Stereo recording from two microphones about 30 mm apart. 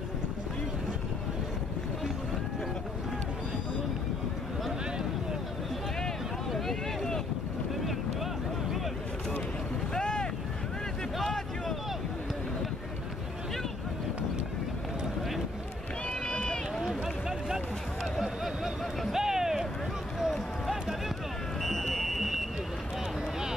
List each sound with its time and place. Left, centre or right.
9.9 s boat: left
16.3 s run: left
18.2 s a sound: centre
21.6 s fire alarm: centre